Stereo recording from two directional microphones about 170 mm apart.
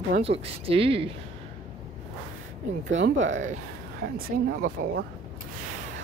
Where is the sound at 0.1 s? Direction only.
35° right (ahead or behind).